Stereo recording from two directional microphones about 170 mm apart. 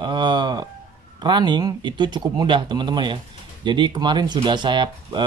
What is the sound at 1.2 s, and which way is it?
Speech, 25° right (ahead or behind).